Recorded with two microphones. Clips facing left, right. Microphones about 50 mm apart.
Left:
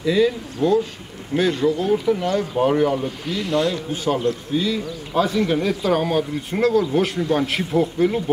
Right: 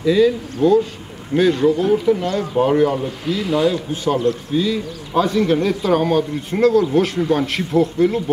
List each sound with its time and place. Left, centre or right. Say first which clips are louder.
0.0 s speech: right 4 dB; centre
0.6 s speech: right 4 dB; centre
1.3 s speech: right 4 dB; centre